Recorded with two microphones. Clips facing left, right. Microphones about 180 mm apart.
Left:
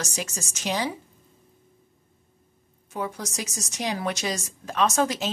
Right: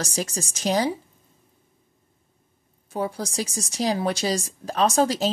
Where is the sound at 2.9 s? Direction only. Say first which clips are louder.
Right 4 dB; 30° right (ahead or behind).